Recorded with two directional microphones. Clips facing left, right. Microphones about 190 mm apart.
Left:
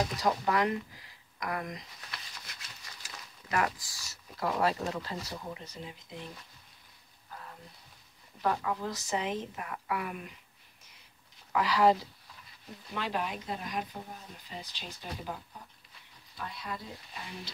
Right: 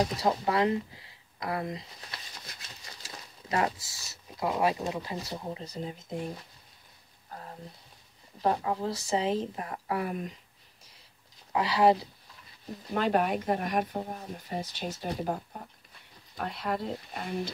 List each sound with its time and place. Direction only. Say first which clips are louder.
0.1 s speech: right 2 dB; 25° right (ahead or behind); by 6.4 s 45° right (ahead or behind)
7.2 s a sound: right 4 dB; 35° right (ahead or behind)
8.4 s speech: right 3 dB; 30° right (ahead or behind)
11.5 s speech: right 2 dB; 25° right (ahead or behind)
12.9 s speech: right 8 dB; 50° right (ahead or behind)
16.3 s speech: right 8 dB; 60° right (ahead or behind)